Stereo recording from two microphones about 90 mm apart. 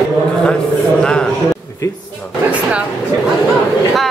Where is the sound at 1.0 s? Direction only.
10° left (ahead or behind).